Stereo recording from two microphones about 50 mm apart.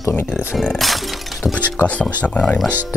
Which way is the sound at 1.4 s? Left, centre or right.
Left.